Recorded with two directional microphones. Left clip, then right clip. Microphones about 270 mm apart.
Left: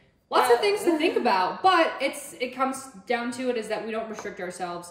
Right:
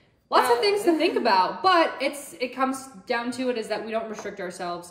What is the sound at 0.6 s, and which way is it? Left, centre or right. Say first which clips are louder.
A woman's voice: right 2 dB; centre.